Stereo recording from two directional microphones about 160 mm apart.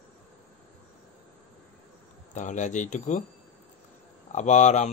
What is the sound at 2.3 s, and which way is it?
Speech, 50° left (ahead or behind).